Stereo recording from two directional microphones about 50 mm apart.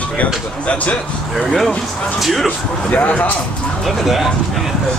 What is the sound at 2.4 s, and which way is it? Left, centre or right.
Speech, left.